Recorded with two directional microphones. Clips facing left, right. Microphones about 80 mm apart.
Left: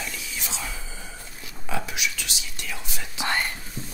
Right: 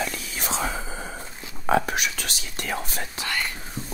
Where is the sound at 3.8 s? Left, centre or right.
Right.